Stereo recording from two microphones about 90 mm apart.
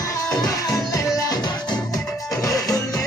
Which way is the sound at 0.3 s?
40° left (ahead or behind).